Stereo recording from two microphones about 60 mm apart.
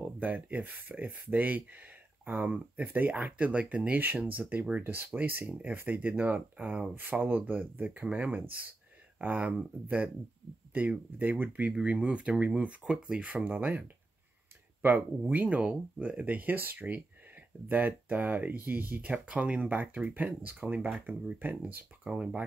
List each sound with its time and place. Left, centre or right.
0.0 s speech: right
10.7 s speech: right
11.7 s speech: centre
14.8 s speech: right
15.2 s speech: right
20.9 s speech: centre
21.4 s speech: right
22.1 s speech: centre